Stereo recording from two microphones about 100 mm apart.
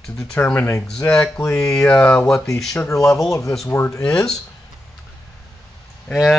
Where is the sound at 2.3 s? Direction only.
30° left (ahead or behind).